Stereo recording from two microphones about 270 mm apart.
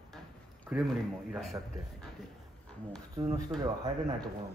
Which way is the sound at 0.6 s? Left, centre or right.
Centre.